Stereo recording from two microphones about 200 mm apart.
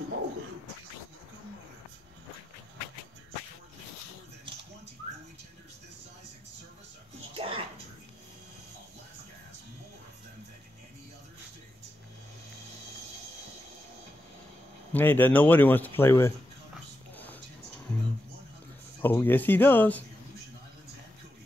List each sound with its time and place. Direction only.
7.3 s a sound: 25° right (ahead or behind)
14.9 s speech: 10° left (ahead or behind)
18.9 s speech: 10° left (ahead or behind)